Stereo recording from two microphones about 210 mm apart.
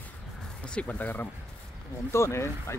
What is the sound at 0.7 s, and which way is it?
Speech, 5° left (ahead or behind).